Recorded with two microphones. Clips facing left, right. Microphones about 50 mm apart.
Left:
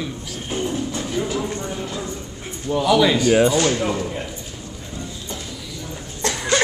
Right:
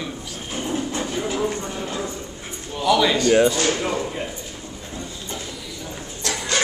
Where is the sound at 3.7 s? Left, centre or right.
Centre.